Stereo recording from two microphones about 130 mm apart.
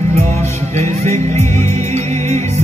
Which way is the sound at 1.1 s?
20° left (ahead or behind).